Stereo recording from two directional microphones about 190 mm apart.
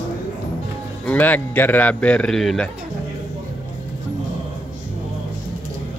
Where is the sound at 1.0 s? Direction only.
10° left (ahead or behind).